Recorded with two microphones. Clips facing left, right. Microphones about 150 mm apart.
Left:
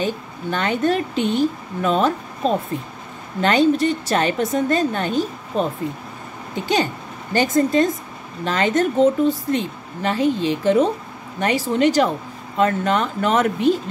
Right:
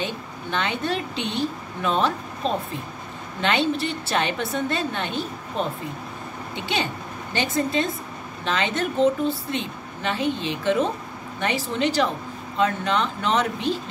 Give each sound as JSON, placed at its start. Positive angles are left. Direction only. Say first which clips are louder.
{"t": 0.0, "sound": "a woman's voice", "louder": "left 6 dB", "side_deg": 45}